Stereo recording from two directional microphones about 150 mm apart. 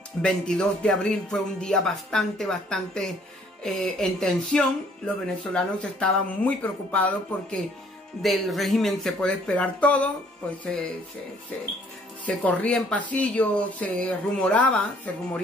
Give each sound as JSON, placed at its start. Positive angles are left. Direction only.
{"t": 0.2, "sound": "speech", "side_deg": 5}